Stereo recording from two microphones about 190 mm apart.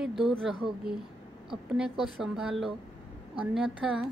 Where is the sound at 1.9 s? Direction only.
Centre (ahead or behind).